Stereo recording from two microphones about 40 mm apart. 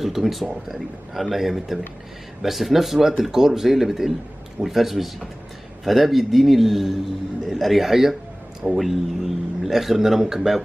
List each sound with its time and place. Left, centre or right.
0.0 s speech: centre